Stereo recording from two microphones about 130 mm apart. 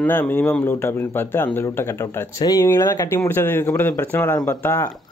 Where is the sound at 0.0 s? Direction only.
15° left (ahead or behind).